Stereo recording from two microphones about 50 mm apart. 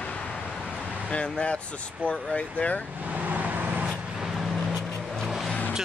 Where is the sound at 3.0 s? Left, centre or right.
Right.